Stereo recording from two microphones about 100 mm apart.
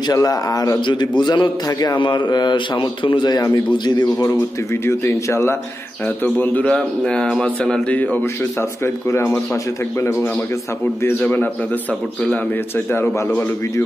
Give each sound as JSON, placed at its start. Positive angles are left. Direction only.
{"t": 0.1, "sound": "speech", "side_deg": 40}
{"t": 0.7, "sound": "a man's voice", "side_deg": 50}
{"t": 2.0, "sound": "a man's voice", "side_deg": 50}
{"t": 4.8, "sound": "a man's voice", "side_deg": 25}
{"t": 11.1, "sound": "a man's voice", "side_deg": 15}